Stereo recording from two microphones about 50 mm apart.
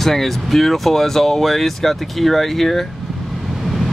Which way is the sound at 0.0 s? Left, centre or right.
Centre.